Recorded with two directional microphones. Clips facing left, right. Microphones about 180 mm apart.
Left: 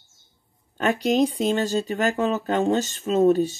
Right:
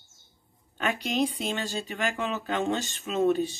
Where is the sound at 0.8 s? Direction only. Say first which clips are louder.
Left 7 dB; 40° left (ahead or behind).